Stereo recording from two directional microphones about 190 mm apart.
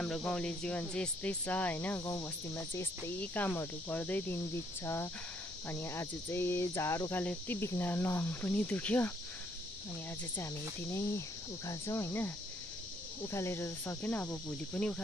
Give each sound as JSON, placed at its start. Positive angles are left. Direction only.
{"t": 0.0, "sound": "speech", "side_deg": 5}
{"t": 10.3, "sound": "speech", "side_deg": 15}
{"t": 13.3, "sound": "speech", "side_deg": 15}